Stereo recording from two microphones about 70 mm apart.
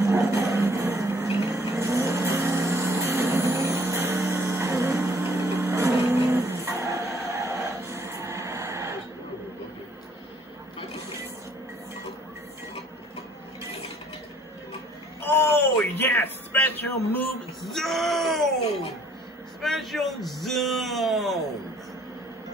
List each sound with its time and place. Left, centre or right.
0.0 s music: right
0.9 s vehicle: right
6.3 s music: right
15.2 s a sound: left
17.6 s music: centre
19.6 s a sound: centre